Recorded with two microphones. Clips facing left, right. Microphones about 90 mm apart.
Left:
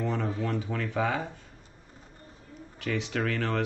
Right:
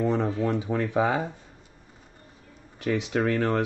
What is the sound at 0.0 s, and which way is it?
Speech, 15° right (ahead or behind).